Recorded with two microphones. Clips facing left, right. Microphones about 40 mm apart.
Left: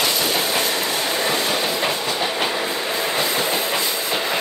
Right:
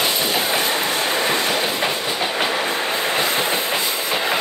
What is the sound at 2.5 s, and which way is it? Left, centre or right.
Train, right.